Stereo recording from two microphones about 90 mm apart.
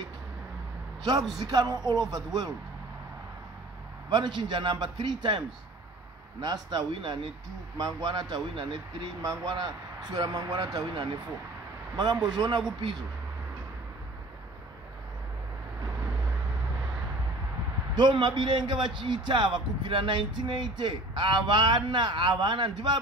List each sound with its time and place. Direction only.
1.4 s speech: 50° right (ahead or behind)
4.1 s speech: 55° right (ahead or behind)
6.4 s speech: 50° right (ahead or behind)
6.9 s speech: 65° right (ahead or behind)
7.7 s speech: 50° right (ahead or behind)
9.2 s speech: 40° right (ahead or behind)
17.9 s speech: 55° right (ahead or behind)